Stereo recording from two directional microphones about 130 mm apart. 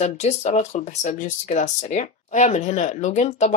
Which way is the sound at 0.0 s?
60° left (ahead or behind).